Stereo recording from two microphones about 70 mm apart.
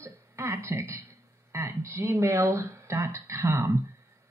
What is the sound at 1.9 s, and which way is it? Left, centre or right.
Speech, right.